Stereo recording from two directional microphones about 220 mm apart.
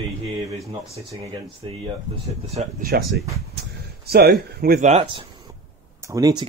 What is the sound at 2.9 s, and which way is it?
Speech, 45° right (ahead or behind).